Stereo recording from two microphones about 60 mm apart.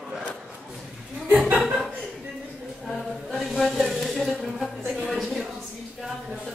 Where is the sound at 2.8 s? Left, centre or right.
Centre.